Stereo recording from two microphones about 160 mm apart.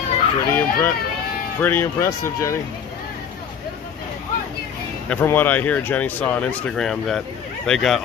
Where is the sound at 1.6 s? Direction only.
15° left (ahead or behind).